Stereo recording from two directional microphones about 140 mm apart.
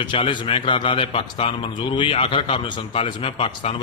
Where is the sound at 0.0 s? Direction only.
35° left (ahead or behind).